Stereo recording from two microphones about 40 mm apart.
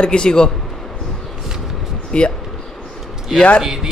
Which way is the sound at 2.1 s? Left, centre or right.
Left.